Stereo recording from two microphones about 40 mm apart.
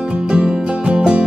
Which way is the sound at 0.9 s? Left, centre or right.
Right.